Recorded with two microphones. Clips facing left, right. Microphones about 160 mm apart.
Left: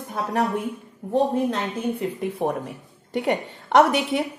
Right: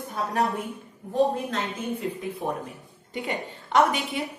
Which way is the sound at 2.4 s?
70° left (ahead or behind).